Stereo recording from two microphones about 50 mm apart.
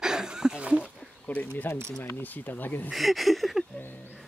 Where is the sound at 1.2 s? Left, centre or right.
Left.